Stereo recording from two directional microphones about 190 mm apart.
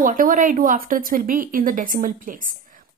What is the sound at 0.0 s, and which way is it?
A woman's voice, 45° right (ahead or behind).